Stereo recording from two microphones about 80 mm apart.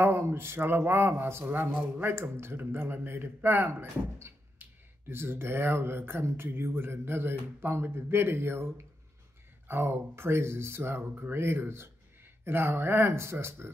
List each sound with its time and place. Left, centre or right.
0.0 s speech: right